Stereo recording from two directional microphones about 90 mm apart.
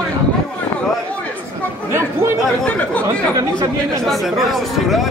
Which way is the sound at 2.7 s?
15° left (ahead or behind).